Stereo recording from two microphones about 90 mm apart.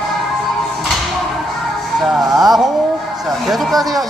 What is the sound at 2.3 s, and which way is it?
Speech, centre (ahead or behind).